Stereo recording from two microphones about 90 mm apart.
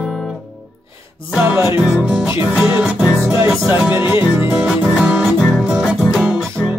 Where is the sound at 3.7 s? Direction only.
20° right (ahead or behind).